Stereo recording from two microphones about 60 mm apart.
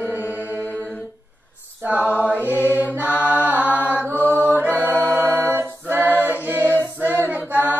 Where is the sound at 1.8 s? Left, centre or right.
Right.